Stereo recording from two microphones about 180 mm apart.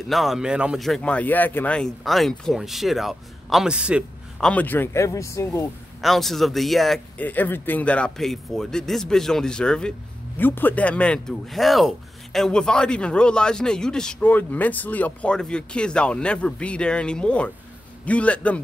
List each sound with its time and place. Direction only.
0.1 s speech: centre (ahead or behind)
4.5 s speech: 10° left (ahead or behind)
5.9 s speech: centre (ahead or behind)